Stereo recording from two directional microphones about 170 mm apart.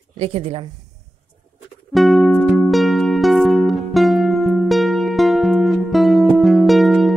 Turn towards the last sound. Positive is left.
turn(degrees=0)  # may be behind; listen again after turning